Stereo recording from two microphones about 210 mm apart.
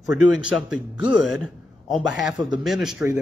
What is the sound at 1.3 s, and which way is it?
A man's voice, centre (ahead or behind).